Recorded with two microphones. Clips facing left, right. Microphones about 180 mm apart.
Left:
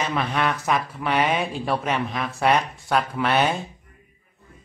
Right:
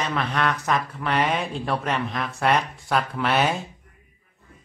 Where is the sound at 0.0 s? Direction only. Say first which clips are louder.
Left 1 dB; 5° left (ahead or behind).